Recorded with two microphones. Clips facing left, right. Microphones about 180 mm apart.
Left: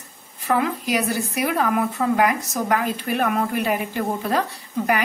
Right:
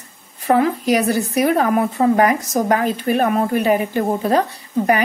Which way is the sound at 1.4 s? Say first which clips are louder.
Right 5 dB; 40° right (ahead or behind).